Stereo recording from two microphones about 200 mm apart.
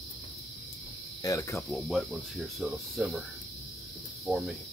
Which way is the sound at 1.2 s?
15° left (ahead or behind).